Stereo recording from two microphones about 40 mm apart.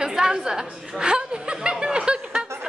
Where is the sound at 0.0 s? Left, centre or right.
Centre.